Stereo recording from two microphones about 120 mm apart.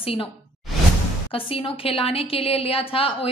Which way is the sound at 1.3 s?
50° left (ahead or behind).